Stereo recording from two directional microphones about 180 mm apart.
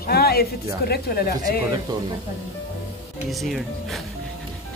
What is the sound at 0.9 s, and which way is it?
Speech, 60° left (ahead or behind).